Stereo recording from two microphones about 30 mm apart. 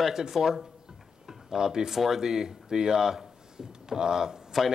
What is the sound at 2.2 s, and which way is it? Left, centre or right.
Speech, centre.